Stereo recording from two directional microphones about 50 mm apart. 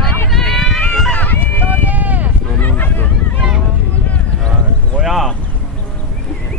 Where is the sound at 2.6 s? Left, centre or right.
Left.